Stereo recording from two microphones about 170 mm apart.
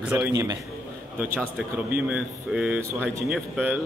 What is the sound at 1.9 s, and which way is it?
Speech, 5° right (ahead or behind).